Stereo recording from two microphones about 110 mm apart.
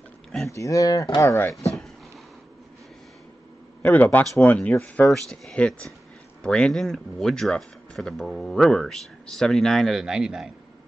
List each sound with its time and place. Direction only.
0.5 s speech: 30° left (ahead or behind)
3.8 s speech: 15° left (ahead or behind)
5.0 s speech: centre (ahead or behind)